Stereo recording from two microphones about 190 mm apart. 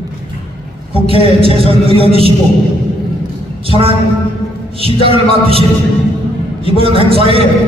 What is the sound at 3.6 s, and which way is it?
Speech, 30° right (ahead or behind).